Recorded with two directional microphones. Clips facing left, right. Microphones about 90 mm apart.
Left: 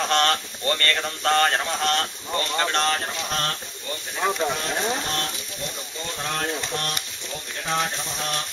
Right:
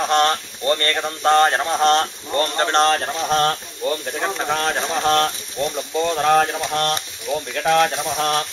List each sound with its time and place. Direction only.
0.0 s speech: 20° right (ahead or behind); by 3.5 s 35° right (ahead or behind)
3.8 s speech: 60° right (ahead or behind)
4.5 s speech: 70° right (ahead or behind)
7.5 s a sound: 80° right